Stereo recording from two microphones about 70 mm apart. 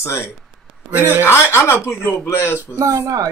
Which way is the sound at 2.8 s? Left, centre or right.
Right.